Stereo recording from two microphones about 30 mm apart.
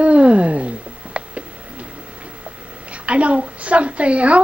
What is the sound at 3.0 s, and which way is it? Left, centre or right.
A woman's voice, right.